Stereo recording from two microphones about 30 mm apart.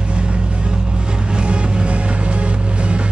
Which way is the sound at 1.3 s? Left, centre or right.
Right.